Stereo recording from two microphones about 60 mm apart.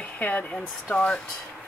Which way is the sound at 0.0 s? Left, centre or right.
Left.